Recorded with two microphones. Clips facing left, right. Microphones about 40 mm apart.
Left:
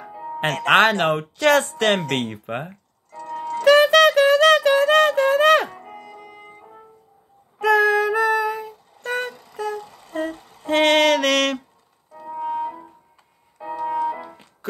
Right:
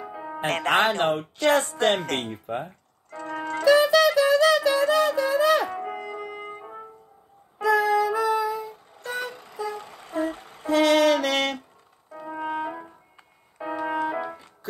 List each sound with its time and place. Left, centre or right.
0.1 s music: right
0.7 s speech: left
2.0 s speech: left
3.1 s music: right
3.6 s music: left
5.8 s music: right
7.6 s music: left
9.3 s vehicle: centre
9.8 s a sound: right
10.7 s music: left
12.1 s music: right